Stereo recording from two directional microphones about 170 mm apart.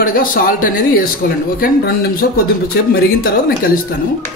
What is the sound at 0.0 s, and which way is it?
Speech, 55° left (ahead or behind).